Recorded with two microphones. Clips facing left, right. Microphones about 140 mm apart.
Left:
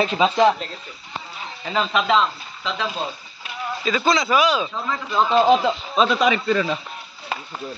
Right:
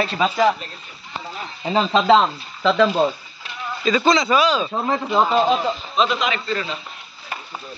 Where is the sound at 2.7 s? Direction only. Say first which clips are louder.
Right 10 dB; 65° right (ahead or behind).